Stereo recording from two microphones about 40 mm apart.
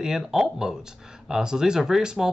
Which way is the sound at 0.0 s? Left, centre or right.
Centre.